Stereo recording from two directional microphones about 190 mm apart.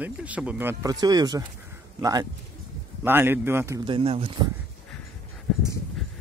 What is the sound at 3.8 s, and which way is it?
Speech, 30° right (ahead or behind).